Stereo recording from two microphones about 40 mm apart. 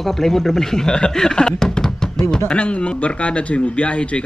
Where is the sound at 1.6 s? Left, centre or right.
Centre.